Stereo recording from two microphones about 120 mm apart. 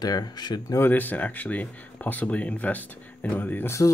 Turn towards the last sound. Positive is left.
turn(degrees=20)  # may be behind; listen again after turning